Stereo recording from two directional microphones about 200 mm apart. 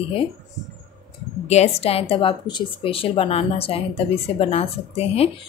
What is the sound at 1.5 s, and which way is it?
Speech, 30° left (ahead or behind).